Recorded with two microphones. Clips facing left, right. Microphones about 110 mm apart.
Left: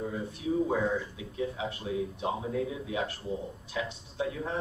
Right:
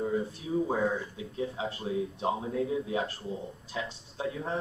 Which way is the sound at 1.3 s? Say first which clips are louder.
Even; 35° right (ahead or behind).